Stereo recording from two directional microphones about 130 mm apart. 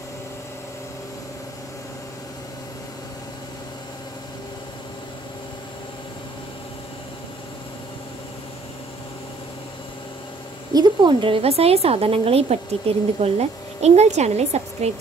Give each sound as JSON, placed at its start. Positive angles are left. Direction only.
{"t": 10.7, "sound": "a woman's voice", "side_deg": -35}